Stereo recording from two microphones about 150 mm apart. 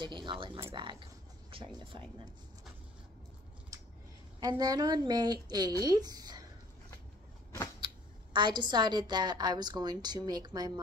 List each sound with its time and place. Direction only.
0.0 s a sound: 30° right (ahead or behind)
0.7 s speech: 35° right (ahead or behind)
4.4 s a woman's voice: 25° right (ahead or behind)
7.8 s a woman's voice: 30° right (ahead or behind)